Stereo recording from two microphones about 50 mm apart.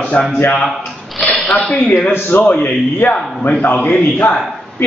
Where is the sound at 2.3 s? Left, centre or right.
Left.